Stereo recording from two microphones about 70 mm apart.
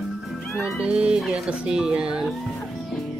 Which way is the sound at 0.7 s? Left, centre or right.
Centre.